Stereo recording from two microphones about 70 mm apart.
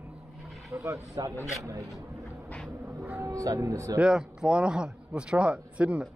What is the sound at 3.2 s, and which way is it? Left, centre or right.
Speech, right.